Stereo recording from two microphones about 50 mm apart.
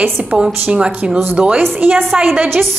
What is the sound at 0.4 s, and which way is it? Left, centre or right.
Speech, right.